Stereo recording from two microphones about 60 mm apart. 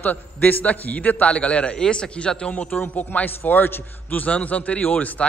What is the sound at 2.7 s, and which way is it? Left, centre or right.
A man's voice, left.